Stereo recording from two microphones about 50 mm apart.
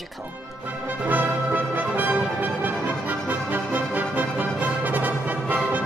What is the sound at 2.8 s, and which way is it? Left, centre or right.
Music, right.